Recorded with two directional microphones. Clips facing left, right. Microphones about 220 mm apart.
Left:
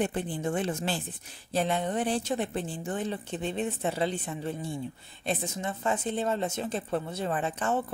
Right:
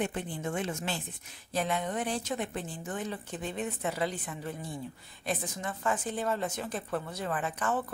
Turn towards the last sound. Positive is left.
turn(degrees=25)  # may be behind; listen again after turning